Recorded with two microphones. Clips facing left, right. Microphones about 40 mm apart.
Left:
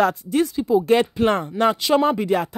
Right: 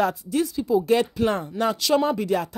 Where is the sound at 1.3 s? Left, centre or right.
Left.